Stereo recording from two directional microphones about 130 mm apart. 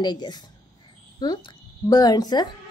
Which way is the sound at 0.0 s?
35° left (ahead or behind).